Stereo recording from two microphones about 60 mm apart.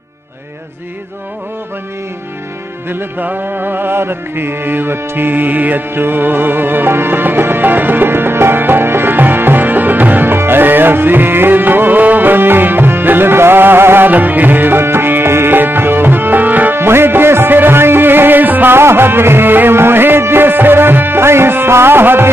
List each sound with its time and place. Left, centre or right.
2.9 s music: right